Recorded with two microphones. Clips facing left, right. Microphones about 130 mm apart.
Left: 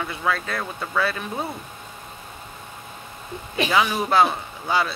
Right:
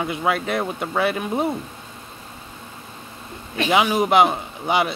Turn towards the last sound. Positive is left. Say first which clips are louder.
# right 3 dB
turn(degrees=-20)  # may be behind; listen again after turning